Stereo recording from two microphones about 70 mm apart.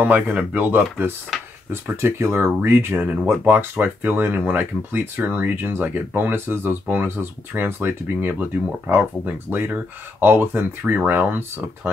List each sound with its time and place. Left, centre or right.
0.0 s speech: right